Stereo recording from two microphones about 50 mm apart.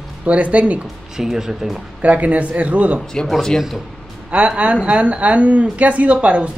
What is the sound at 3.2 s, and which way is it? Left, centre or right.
Speech, centre.